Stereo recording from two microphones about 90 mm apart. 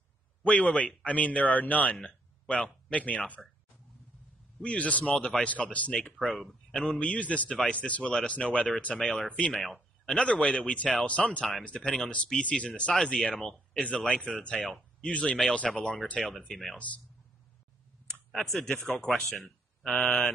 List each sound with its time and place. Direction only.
0.4 s speech: 15° left (ahead or behind)
3.4 s speech: centre (ahead or behind)
4.6 s speech: 15° left (ahead or behind)
6.1 s speech: centre (ahead or behind)
9.6 s speech: centre (ahead or behind)
10.0 s speech: 10° left (ahead or behind)
16.7 s speech: 15° left (ahead or behind)
18.3 s speech: 5° left (ahead or behind)